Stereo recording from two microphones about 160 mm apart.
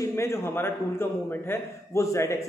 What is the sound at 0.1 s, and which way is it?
A man's voice, 15° left (ahead or behind).